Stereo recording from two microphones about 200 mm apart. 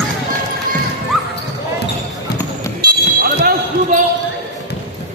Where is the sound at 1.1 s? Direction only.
Centre (ahead or behind).